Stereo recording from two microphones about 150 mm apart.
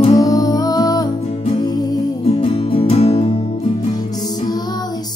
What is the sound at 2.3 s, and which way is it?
Music, 40° left (ahead or behind).